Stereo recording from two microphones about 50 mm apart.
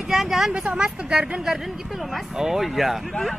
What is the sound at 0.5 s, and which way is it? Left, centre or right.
Speech, centre.